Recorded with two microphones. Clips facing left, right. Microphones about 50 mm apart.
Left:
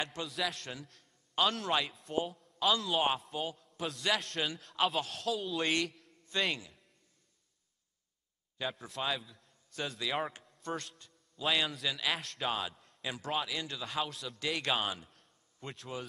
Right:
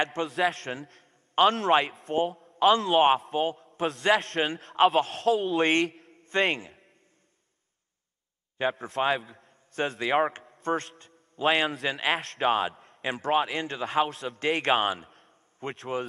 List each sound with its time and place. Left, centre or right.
0.0 s a man's voice: right
0.3 s a man's voice: right
5.9 s a sound: right
8.5 s a man's voice: right
13.8 s a man's voice: right
14.1 s a man's voice: right